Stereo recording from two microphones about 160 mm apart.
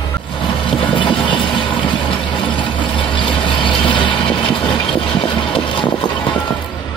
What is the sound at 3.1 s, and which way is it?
Vehicle, 30° left (ahead or behind).